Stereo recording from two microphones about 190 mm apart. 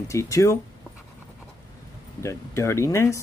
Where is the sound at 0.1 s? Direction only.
15° left (ahead or behind).